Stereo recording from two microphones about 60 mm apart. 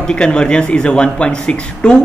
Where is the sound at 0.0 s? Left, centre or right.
Centre.